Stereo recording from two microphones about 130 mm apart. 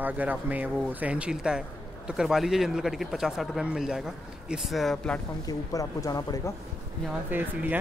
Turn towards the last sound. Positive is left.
turn(degrees=-15)  # may be behind; listen again after turning